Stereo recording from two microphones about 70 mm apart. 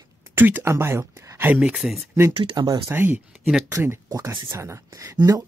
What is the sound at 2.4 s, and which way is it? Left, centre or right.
Speech, right.